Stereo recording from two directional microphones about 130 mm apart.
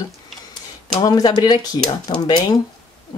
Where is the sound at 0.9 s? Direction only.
30° left (ahead or behind).